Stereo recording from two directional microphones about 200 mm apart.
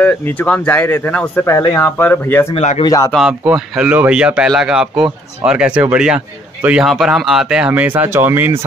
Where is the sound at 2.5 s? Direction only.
30° left (ahead or behind).